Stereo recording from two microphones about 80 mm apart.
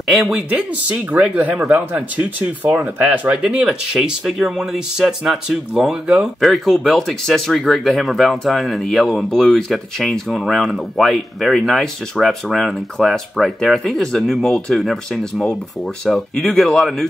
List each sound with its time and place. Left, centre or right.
0.0 s speech: centre
0.5 s speech: centre